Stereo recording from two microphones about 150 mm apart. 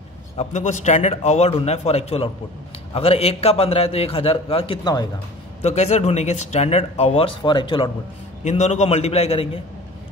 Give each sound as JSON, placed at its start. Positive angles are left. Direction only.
{"t": 0.4, "sound": "a man's voice", "side_deg": 50}
{"t": 5.6, "sound": "speech", "side_deg": 50}
{"t": 8.5, "sound": "speech", "side_deg": 50}